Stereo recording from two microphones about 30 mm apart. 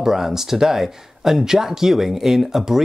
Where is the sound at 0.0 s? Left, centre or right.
Centre.